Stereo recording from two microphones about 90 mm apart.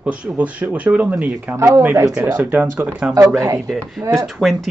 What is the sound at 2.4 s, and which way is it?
Speech, 20° right (ahead or behind).